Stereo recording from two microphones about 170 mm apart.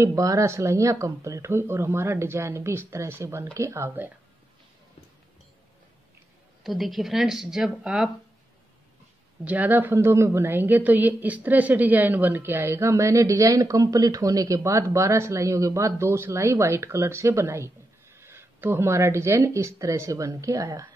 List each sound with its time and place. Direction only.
0.0 s a woman's voice: 20° right (ahead or behind)
6.6 s speech: centre (ahead or behind)
9.4 s a woman's voice: 10° right (ahead or behind)